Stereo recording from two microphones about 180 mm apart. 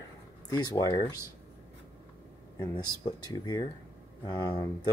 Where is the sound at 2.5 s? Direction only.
25° left (ahead or behind).